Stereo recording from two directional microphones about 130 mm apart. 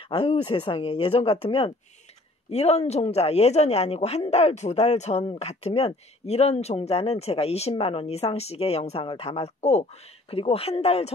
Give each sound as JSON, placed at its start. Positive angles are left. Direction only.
{"t": 0.1, "sound": "speech", "side_deg": 45}
{"t": 5.2, "sound": "speech", "side_deg": 45}